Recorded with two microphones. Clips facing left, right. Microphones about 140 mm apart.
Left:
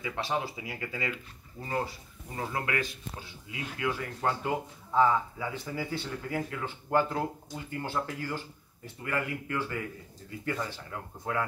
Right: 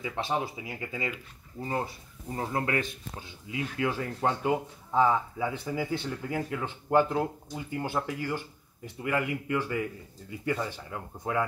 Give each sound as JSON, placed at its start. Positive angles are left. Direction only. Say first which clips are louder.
{"t": 0.0, "sound": "speech", "louder": "right 1 dB", "side_deg": -20}
{"t": 3.8, "sound": "speech", "louder": "right 2 dB", "side_deg": -20}